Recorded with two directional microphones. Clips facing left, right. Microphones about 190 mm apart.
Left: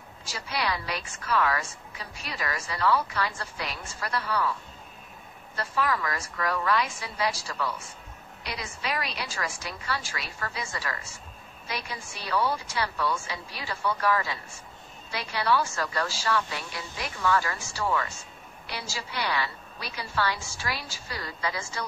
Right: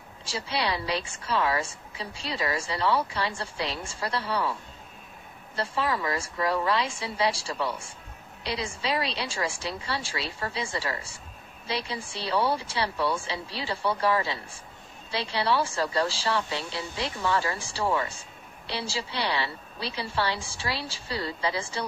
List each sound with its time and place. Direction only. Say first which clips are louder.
0.2 s a woman's voice: right 2 dB; 30° right (ahead or behind)
5.6 s a woman's voice: even; 25° right (ahead or behind)